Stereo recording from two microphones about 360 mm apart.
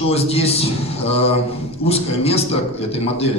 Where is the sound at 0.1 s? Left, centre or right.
Centre.